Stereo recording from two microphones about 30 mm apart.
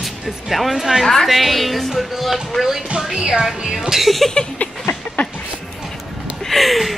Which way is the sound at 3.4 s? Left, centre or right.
Centre.